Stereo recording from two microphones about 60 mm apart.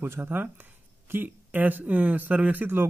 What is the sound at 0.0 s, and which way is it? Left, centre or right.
A man's voice, right.